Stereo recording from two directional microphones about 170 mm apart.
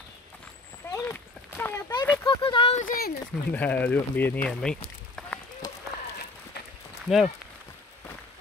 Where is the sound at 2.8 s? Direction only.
60° left (ahead or behind).